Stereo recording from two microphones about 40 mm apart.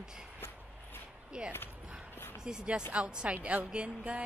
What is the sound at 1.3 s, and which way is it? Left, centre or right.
A woman's voice, right.